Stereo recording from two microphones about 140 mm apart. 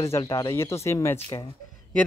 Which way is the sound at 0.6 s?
20° left (ahead or behind).